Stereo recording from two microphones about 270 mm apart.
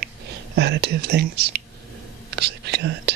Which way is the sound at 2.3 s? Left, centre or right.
Right.